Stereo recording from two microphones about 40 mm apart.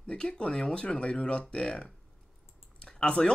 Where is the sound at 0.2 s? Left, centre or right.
Left.